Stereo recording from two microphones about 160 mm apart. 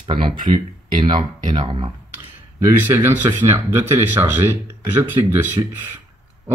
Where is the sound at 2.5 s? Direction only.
15° right (ahead or behind).